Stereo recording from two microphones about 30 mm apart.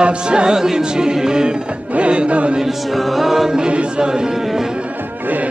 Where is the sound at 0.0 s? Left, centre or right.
Right.